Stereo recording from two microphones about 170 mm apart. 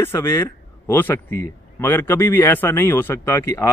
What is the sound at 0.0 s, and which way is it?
Speech, 15° left (ahead or behind).